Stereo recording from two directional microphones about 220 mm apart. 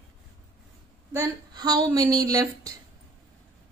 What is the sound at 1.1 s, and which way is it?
A woman's voice, 20° right (ahead or behind).